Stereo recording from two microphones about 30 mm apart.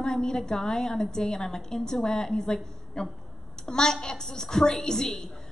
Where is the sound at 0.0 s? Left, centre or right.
Left.